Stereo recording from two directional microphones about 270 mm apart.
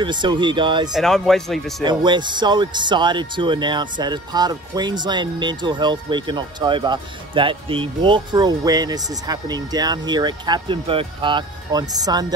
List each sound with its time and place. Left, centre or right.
0.0 s speech: centre
0.9 s speech: centre
1.8 s speech: centre